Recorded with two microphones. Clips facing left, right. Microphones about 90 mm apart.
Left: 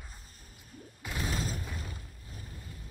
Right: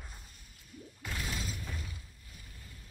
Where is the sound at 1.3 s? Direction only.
40° left (ahead or behind).